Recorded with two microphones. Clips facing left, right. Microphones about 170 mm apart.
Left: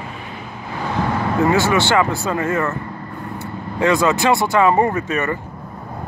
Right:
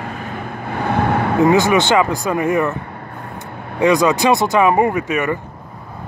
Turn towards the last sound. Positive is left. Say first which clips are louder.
# right 2 dB
turn(degrees=-10)  # may be behind; listen again after turning